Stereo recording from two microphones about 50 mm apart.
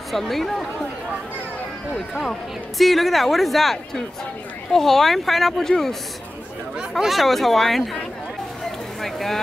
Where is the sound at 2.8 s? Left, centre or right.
Centre.